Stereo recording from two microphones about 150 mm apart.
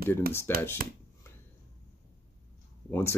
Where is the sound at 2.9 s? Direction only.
15° left (ahead or behind).